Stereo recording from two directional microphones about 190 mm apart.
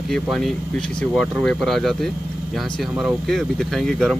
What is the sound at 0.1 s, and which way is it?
Speech, centre (ahead or behind).